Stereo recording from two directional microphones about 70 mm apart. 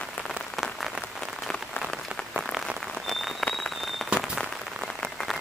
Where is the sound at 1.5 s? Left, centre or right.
Centre.